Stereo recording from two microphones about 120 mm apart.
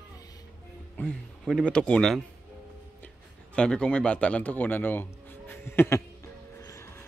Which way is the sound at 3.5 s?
10° left (ahead or behind).